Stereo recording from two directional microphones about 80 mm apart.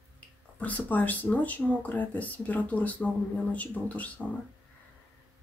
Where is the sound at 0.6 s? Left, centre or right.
Left.